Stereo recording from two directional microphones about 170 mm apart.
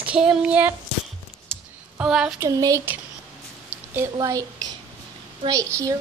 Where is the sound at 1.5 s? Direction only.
5° left (ahead or behind).